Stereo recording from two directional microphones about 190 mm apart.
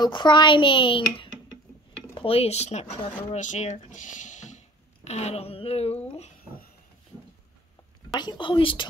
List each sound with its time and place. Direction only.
0.0 s speech: 25° left (ahead or behind)
8.1 s speech: 25° left (ahead or behind)